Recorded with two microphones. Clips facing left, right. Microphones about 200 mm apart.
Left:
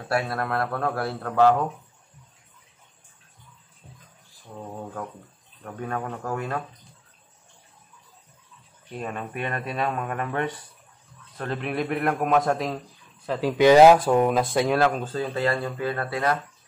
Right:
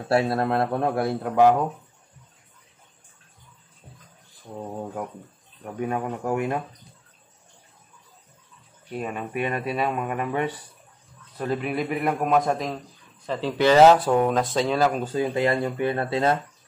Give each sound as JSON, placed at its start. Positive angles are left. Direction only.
{"t": 0.1, "sound": "a man's voice", "side_deg": -25}
{"t": 4.7, "sound": "speech", "side_deg": -15}
{"t": 8.9, "sound": "a man's voice", "side_deg": -10}
{"t": 14.8, "sound": "a man's voice", "side_deg": -5}
{"t": 15.0, "sound": "a man's voice", "side_deg": -15}